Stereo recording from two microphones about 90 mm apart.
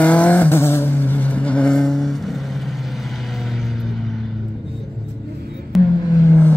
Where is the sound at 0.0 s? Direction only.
15° left (ahead or behind); by 2.4 s centre (ahead or behind).